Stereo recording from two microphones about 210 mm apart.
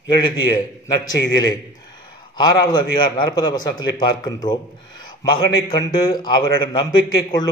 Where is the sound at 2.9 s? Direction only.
20° left (ahead or behind).